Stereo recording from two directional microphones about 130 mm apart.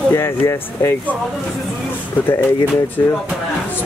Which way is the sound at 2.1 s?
20° left (ahead or behind).